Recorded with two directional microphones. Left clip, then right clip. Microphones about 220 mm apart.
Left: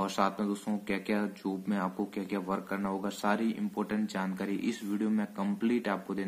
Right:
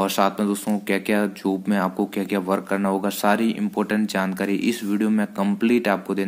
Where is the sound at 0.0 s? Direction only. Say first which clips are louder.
Right 10 dB; 25° right (ahead or behind).